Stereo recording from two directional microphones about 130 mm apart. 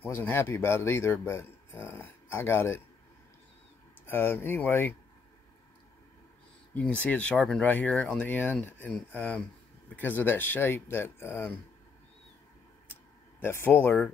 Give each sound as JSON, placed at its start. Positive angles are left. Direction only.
{"t": 0.0, "sound": "speech", "side_deg": 15}
{"t": 4.0, "sound": "speech", "side_deg": 15}
{"t": 6.7, "sound": "speech", "side_deg": 10}
{"t": 13.4, "sound": "speech", "side_deg": 20}